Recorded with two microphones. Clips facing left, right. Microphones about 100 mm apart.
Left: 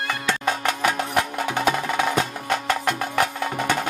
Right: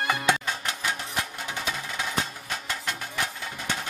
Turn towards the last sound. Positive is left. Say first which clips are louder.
# left 10 dB
turn(degrees=65)  # may be behind; listen again after turning